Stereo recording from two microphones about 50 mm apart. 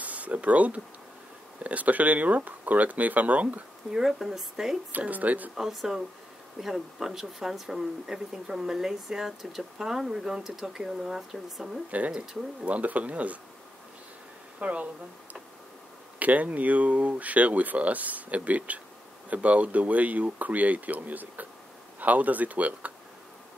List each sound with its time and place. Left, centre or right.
0.0 s speech: right
3.9 s speech: centre
4.9 s speech: right
5.6 s speech: centre
12.1 s speech: right
14.6 s speech: right
16.2 s speech: right